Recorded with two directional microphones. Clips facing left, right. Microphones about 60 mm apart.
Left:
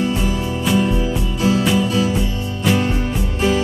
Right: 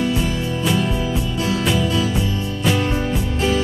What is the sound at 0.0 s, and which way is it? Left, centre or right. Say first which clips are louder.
Music: left 1 dB; centre.